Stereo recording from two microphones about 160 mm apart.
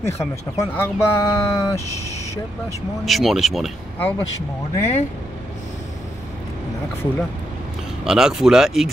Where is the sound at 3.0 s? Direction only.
Centre (ahead or behind).